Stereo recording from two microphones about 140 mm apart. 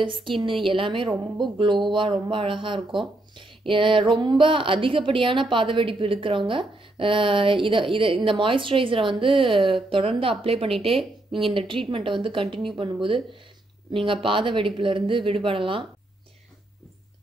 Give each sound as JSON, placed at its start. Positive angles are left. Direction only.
{"t": 0.0, "sound": "a woman's voice", "side_deg": -35}